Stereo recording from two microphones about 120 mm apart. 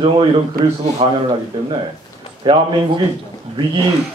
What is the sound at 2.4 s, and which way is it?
Speech, 40° right (ahead or behind).